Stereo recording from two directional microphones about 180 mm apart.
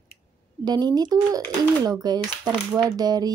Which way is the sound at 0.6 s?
25° right (ahead or behind).